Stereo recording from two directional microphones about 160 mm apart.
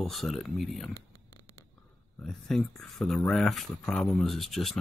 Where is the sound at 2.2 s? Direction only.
5° left (ahead or behind).